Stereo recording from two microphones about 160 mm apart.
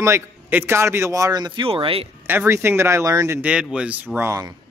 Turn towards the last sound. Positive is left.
turn(degrees=-20)  # may be behind; listen again after turning